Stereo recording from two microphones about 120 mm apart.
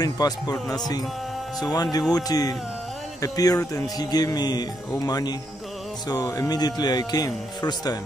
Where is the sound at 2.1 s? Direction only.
30° left (ahead or behind).